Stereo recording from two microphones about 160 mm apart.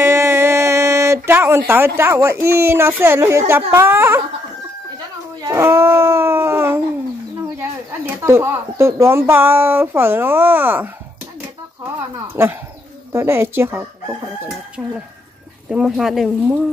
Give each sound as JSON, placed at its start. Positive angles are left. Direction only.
{"t": 0.0, "sound": "speech", "side_deg": -15}
{"t": 5.4, "sound": "speech", "side_deg": -15}
{"t": 8.2, "sound": "speech", "side_deg": -15}
{"t": 12.4, "sound": "speech", "side_deg": -15}
{"t": 14.8, "sound": "speech", "side_deg": -5}